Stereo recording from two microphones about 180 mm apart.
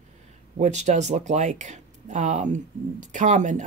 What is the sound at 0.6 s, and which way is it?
Speech, 40° right (ahead or behind).